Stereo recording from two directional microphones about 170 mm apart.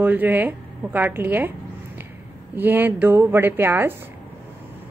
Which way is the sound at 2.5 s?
10° right (ahead or behind).